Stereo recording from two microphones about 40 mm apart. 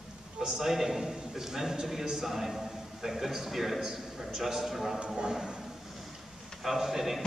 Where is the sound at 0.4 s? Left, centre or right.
Centre.